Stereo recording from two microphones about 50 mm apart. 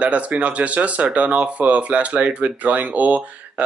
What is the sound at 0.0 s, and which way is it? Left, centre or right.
Speech, right.